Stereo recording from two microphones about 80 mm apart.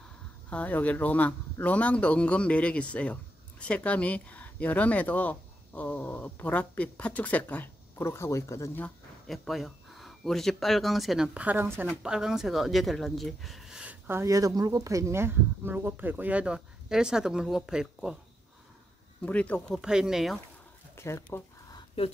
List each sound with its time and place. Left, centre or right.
0.5 s speech: centre; by 8.7 s left
9.3 s speech: centre
11.3 s speech: centre
11.6 s speech: right
12.0 s speech: centre
13.8 s a sound: right
14.2 s speech: right; by 18.1 s centre
19.2 s speech: centre
19.7 s speech: centre
20.9 s speech: left